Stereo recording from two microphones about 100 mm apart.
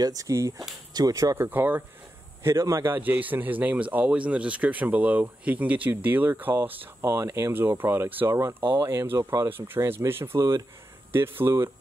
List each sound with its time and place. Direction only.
0.0 s speech: 35° right (ahead or behind); by 1.9 s 20° right (ahead or behind)
2.4 s speech: 30° right (ahead or behind)